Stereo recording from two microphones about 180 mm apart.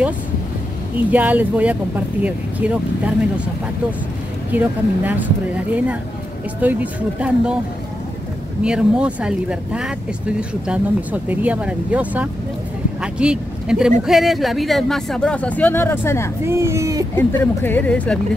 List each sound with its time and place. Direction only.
1.1 s speech: 10° right (ahead or behind)
4.5 s speech: 10° right (ahead or behind)
6.6 s speech: 10° right (ahead or behind)
8.6 s speech: 5° right (ahead or behind); by 16.3 s 15° left (ahead or behind)
16.4 s speech: 15° right (ahead or behind)
17.2 s speech: 10° left (ahead or behind)